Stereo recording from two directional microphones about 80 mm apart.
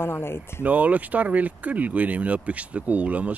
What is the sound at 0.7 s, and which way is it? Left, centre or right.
Speech, centre.